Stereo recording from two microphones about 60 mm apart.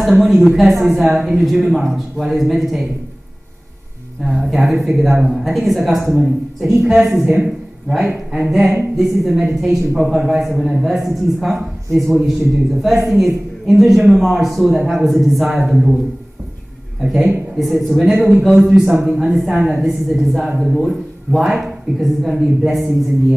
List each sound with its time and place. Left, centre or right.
0.0 s a woman's voice: centre
1.4 s a woman's voice: centre
4.2 s a woman's voice: centre
6.8 s a woman's voice: centre
17.0 s a woman's voice: centre